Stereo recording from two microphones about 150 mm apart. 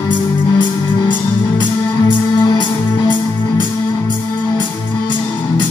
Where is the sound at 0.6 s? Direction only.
30° left (ahead or behind).